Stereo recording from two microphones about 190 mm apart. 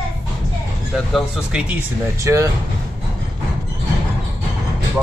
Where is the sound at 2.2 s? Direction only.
15° right (ahead or behind).